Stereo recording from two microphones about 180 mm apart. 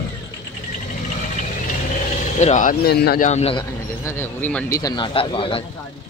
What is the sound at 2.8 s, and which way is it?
Speech, 65° left (ahead or behind).